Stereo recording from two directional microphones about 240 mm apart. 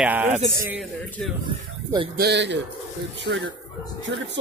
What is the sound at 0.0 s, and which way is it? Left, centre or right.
Speech, centre.